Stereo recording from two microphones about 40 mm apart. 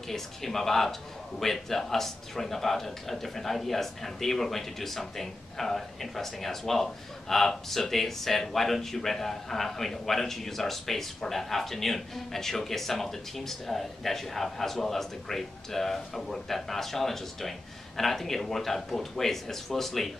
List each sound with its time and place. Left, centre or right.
0.1 s speech: centre